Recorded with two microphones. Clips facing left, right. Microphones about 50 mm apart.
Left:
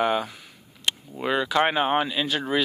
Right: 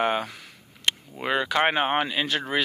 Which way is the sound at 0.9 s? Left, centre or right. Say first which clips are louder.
Right 1 dB; right.